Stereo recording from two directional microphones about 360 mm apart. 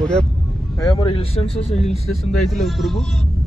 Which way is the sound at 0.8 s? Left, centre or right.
Centre.